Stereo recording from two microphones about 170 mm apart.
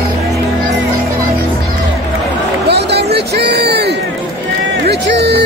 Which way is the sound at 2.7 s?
75° right (ahead or behind).